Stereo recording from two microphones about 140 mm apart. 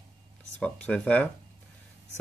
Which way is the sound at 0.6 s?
10° left (ahead or behind).